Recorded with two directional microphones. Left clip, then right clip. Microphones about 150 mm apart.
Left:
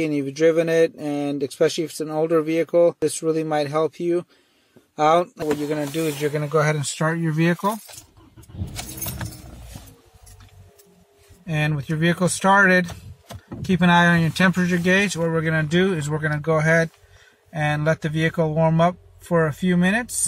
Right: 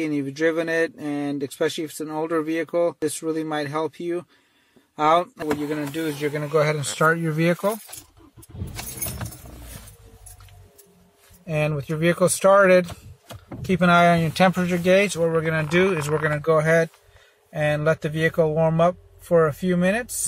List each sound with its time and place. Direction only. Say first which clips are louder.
0.0 s speech: left 4 dB; 15° left (ahead or behind)
6.2 s speech: even; centre (ahead or behind)
9.0 s keys jangling: left 1 dB; centre (ahead or behind)
11.4 s speech: right 1 dB; centre (ahead or behind)